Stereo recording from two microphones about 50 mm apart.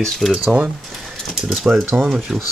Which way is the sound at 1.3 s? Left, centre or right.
Centre.